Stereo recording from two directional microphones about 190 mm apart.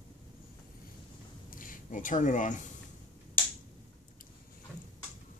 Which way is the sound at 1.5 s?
45° left (ahead or behind).